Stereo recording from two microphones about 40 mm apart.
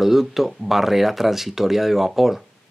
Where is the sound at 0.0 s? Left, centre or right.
Centre.